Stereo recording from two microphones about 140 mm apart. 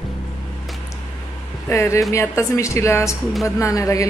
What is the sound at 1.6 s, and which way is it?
Speech, 20° left (ahead or behind).